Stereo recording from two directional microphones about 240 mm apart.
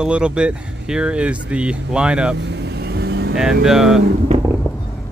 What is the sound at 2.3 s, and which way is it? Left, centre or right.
Vehicle, right.